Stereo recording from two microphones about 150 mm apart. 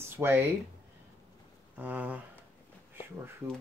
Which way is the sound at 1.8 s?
10° right (ahead or behind).